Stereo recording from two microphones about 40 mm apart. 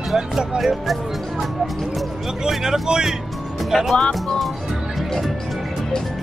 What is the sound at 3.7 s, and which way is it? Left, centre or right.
Speech, centre.